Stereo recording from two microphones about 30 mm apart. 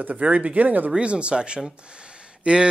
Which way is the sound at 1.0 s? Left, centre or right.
Right.